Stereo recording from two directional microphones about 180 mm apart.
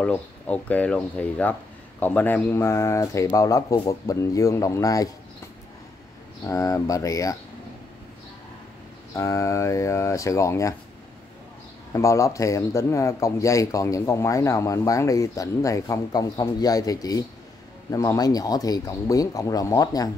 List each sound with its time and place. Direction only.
0.0 s a man's voice: 5° left (ahead or behind)
6.4 s speech: 20° left (ahead or behind)
9.1 s a man's voice: 20° left (ahead or behind)
11.9 s a man's voice: 15° left (ahead or behind)